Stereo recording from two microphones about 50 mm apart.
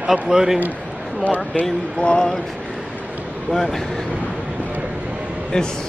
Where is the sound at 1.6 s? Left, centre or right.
Left.